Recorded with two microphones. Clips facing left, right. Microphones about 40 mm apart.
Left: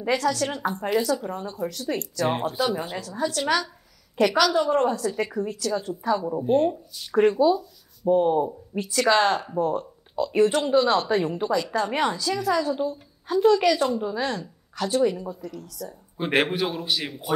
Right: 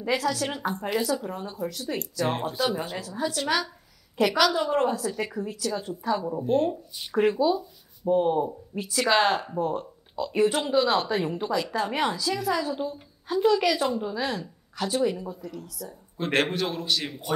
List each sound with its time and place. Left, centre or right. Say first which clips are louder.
0.1 s a woman's voice: left 3 dB; centre
6.3 s a woman's voice: left 3 dB; centre
7.4 s speech: left 4 dB; left
8.1 s a woman's voice: left 3 dB; centre
16.2 s a man's voice: left 2 dB; centre